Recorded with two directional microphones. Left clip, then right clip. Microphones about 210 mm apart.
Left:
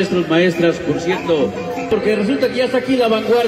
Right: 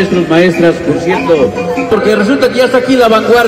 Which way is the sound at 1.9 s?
35° left (ahead or behind).